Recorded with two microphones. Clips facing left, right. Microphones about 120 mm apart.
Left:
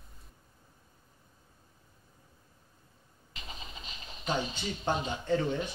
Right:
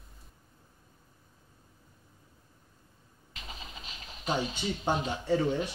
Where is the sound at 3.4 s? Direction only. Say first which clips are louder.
Right 1 dB; 5° right (ahead or behind).